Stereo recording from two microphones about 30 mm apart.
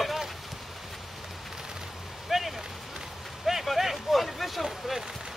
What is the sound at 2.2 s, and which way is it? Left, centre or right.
Vehicle, centre.